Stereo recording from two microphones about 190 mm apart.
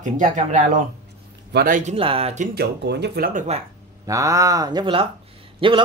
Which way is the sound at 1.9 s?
30° right (ahead or behind).